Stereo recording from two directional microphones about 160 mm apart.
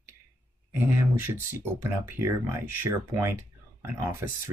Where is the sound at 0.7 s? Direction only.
15° right (ahead or behind).